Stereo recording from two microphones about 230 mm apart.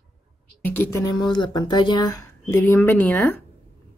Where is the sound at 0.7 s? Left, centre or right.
Centre.